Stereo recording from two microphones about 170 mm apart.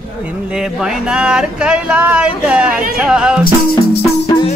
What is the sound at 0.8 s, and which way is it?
Speech, 5° right (ahead or behind).